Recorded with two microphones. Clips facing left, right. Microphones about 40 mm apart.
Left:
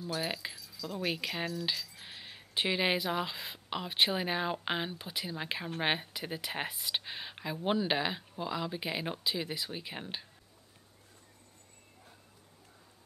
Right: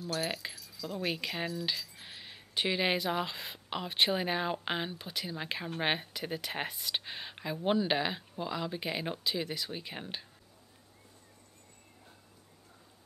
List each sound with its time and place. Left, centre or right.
0.0 s speech: centre
0.3 s speech: centre